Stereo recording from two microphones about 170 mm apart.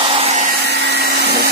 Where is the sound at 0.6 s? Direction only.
80° right.